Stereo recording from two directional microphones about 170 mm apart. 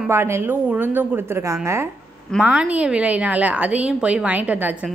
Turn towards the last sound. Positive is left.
turn(degrees=-10)  # may be behind; listen again after turning